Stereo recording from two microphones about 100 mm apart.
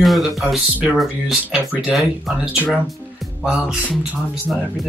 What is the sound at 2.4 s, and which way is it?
Music, 10° right (ahead or behind).